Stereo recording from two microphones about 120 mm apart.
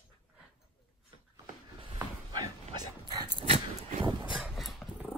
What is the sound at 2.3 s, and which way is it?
Dog, 35° right (ahead or behind).